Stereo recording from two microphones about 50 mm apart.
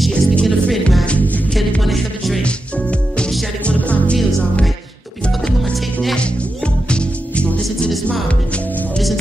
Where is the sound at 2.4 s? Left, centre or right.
Left.